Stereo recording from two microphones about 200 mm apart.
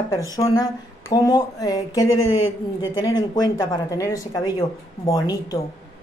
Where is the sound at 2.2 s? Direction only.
90° left.